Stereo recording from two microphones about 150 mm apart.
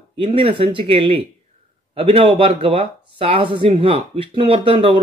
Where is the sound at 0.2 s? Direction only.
35° right (ahead or behind).